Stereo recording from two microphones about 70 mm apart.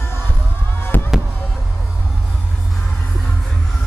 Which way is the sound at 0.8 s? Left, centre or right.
Left.